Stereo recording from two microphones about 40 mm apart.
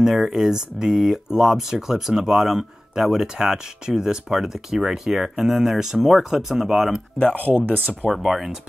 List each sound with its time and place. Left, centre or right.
0.0 s speech: centre
7.4 s speech: right
8.1 s speech: centre